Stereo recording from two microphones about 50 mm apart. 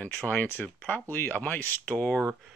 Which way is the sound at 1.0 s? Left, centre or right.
Left.